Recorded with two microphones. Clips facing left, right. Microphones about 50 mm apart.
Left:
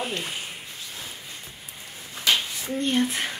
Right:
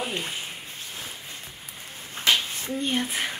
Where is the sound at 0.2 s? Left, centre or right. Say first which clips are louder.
Even; centre.